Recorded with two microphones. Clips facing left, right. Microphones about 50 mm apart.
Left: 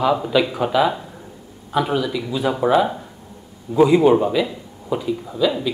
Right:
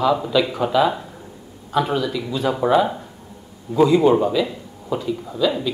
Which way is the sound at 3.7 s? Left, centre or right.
Centre.